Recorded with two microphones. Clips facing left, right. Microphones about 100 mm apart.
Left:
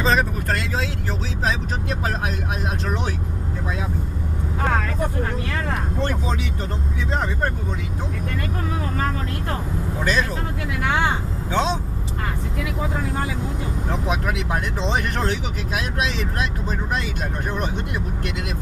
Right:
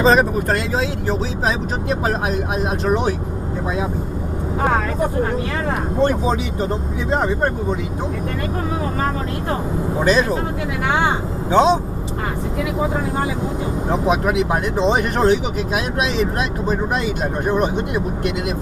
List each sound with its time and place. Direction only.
0.0 s speech: 20° right (ahead or behind)
5.9 s speech: 15° right (ahead or behind)
9.9 s speech: 20° right (ahead or behind)
10.9 s speech: 10° right (ahead or behind)
13.8 s speech: 20° right (ahead or behind)